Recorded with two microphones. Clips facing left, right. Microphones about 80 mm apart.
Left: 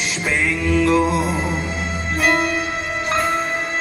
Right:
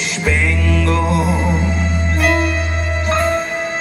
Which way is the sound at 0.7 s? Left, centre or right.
Centre.